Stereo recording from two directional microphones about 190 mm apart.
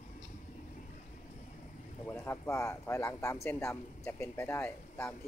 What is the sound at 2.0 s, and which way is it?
Speech, 15° left (ahead or behind).